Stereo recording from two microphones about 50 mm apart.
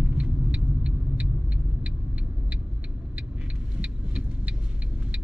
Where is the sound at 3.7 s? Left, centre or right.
Right.